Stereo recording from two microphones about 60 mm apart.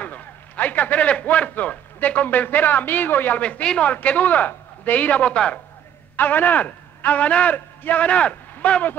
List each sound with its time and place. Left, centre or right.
0.0 s a man's voice: left
3.4 s a man's voice: centre
6.1 s a man's voice: left